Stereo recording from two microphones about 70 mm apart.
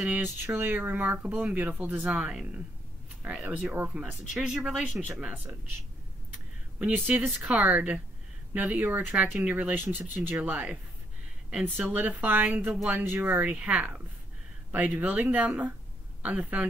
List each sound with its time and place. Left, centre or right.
0.2 s speech: right
2.0 s speech: centre
4.0 s speech: centre
7.1 s speech: right
13.4 s a woman's voice: centre